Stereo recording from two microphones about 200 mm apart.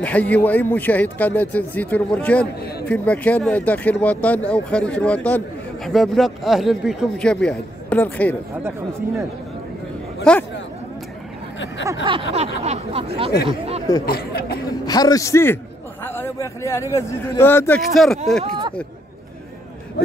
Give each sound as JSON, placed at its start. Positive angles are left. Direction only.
{"t": 0.0, "sound": "a man's voice", "side_deg": 5}
{"t": 10.3, "sound": "speech", "side_deg": 5}
{"t": 11.8, "sound": "a sound", "side_deg": -20}
{"t": 13.5, "sound": "speech", "side_deg": -30}
{"t": 14.0, "sound": "speech", "side_deg": 50}
{"t": 14.9, "sound": "a man's voice", "side_deg": 20}